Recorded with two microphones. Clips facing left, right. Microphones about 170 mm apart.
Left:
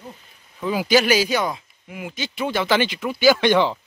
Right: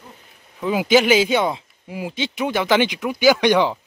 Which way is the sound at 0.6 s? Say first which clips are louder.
Right 2 dB; 20° right (ahead or behind).